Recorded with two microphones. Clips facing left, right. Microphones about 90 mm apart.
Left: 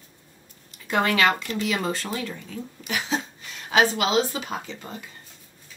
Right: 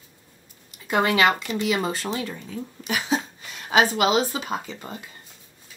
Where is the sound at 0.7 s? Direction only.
15° right (ahead or behind).